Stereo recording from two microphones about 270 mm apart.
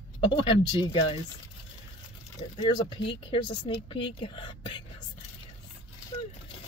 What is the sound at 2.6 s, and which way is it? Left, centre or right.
Speech, centre.